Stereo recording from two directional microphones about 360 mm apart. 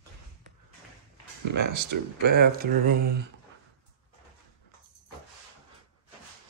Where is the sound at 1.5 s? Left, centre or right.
Right.